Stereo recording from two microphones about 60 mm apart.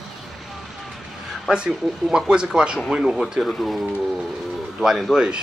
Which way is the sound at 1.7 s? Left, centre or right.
Centre.